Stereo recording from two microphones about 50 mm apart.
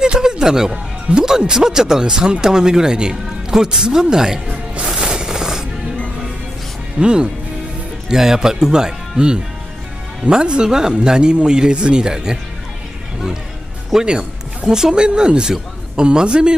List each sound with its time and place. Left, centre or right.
0.0 s speech: centre
4.7 s music: centre
7.0 s speech: centre
13.9 s speech: centre